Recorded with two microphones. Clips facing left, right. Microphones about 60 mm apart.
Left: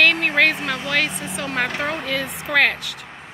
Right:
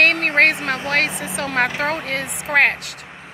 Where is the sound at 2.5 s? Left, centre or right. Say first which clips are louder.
Right 2 dB; right.